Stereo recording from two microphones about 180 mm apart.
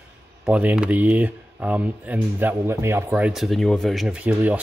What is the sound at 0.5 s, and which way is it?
Speech, 10° right (ahead or behind).